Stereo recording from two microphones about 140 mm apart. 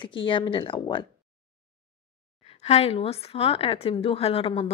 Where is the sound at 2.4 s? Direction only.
50° left (ahead or behind).